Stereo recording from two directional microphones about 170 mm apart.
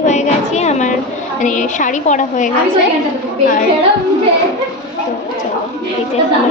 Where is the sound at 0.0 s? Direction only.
45° left (ahead or behind).